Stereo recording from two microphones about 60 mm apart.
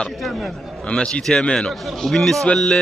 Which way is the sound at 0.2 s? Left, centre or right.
Centre.